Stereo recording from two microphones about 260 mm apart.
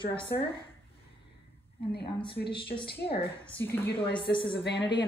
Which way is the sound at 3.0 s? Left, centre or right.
Left.